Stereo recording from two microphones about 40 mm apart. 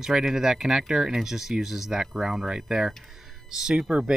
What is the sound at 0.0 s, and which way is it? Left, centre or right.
Speech, centre.